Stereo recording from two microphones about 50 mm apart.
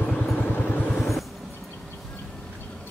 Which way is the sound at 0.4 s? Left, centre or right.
Left.